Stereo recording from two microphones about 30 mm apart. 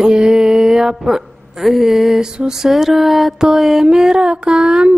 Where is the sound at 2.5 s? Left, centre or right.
Centre.